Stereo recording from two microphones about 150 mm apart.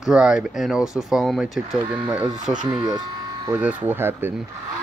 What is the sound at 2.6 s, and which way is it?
Speech, 30° right (ahead or behind).